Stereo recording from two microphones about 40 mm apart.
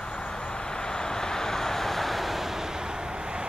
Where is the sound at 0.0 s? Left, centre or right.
Left.